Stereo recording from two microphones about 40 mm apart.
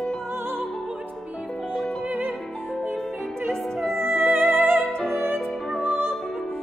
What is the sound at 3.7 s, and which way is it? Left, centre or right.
Music, centre.